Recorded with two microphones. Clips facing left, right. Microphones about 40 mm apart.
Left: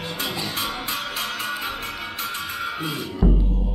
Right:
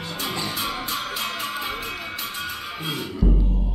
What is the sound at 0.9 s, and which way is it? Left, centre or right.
Music, left.